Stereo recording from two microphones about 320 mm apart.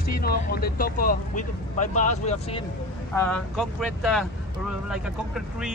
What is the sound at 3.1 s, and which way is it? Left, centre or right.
Speech, centre.